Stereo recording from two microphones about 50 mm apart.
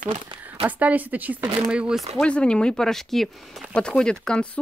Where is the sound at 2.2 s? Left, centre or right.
Left; by 3.3 s centre.